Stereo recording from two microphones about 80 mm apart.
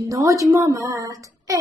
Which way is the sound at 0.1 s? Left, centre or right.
Right.